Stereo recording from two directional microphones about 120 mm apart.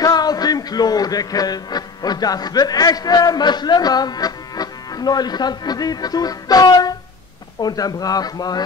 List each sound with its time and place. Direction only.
0.0 s a man's voice: 35° left (ahead or behind)